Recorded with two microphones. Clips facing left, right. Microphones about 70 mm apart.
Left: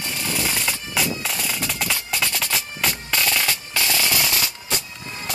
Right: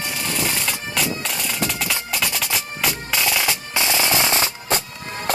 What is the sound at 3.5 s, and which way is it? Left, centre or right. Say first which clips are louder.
Music: right 2 dB; right.